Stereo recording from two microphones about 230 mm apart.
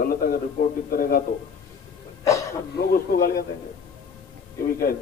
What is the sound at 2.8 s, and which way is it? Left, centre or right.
Speech, left.